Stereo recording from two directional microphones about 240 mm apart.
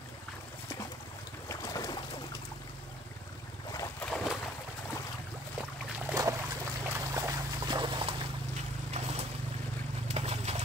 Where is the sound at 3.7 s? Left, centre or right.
Centre.